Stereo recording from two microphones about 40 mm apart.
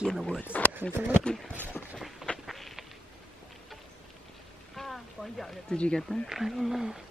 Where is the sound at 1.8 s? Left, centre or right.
Left.